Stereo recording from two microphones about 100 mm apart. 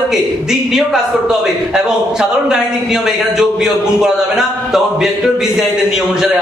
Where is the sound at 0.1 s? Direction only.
5° right (ahead or behind).